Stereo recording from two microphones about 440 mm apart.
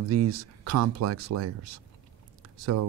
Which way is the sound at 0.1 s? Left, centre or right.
Right.